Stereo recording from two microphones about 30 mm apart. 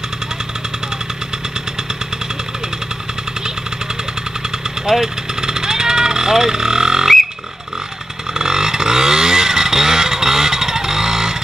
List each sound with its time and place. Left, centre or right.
5.0 s vehicle: centre
8.4 s vehicle: centre